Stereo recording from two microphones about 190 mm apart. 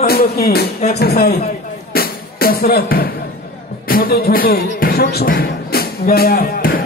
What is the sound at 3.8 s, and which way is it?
Speech, 50° left (ahead or behind).